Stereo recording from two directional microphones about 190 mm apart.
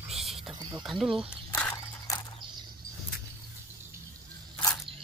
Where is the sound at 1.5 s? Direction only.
10° left (ahead or behind).